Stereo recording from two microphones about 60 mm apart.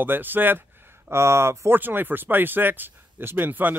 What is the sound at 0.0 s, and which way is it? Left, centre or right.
Speech, right.